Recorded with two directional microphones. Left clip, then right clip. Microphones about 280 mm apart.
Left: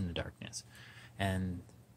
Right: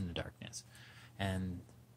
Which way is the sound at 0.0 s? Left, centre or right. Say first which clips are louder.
Left 3 dB; centre.